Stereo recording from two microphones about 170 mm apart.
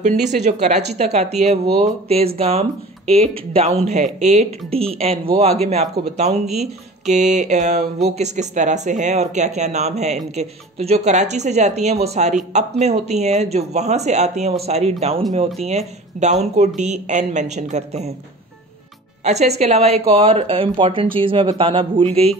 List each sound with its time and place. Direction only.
0.0 s speech: 45° right (ahead or behind)
19.2 s speech: 40° right (ahead or behind)